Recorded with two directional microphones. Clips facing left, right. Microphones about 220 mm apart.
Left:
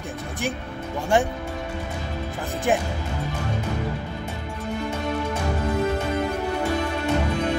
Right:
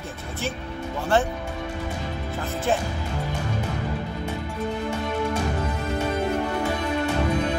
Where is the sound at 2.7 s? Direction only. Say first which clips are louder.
Left 2 dB; 15° left (ahead or behind).